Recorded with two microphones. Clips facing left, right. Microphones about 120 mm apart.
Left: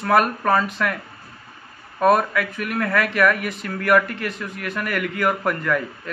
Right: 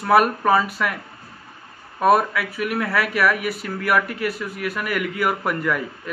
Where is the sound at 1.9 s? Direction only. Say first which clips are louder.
Even; 5° right (ahead or behind).